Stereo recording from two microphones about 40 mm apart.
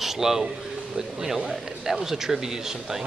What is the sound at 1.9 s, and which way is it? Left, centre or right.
Speech, centre.